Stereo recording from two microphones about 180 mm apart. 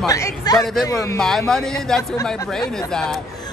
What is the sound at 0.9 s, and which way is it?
Speech, 20° left (ahead or behind).